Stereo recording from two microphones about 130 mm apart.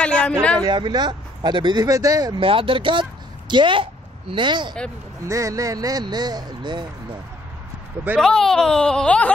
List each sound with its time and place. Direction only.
0.0 s a man's voice: 10° left (ahead or behind)
0.7 s speech: 35° right (ahead or behind)
5.2 s speech: 25° right (ahead or behind)
8.2 s speech: 5° left (ahead or behind)